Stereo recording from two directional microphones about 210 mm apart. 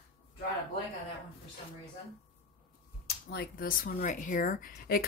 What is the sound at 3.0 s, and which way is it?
Speech, 50° left (ahead or behind).